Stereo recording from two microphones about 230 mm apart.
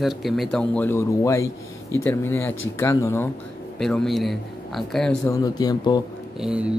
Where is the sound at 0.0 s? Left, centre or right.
Centre.